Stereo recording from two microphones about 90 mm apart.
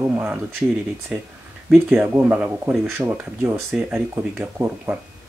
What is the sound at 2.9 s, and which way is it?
Speech, 30° right (ahead or behind).